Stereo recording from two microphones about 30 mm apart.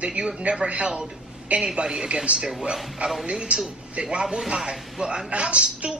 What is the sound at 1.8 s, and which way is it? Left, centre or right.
Speech, right.